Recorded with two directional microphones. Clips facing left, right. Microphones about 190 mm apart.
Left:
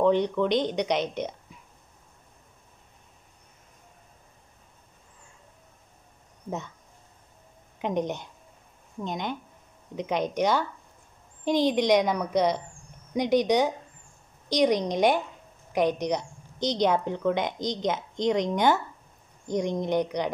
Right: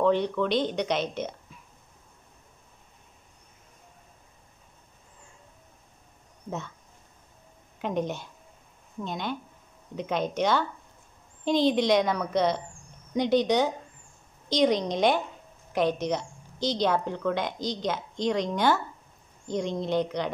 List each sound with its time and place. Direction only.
0.0 s speech: 15° left (ahead or behind)
7.8 s a woman's voice: 20° left (ahead or behind)